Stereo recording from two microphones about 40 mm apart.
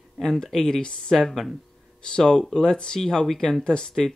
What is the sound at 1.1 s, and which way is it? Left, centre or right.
Speech, centre.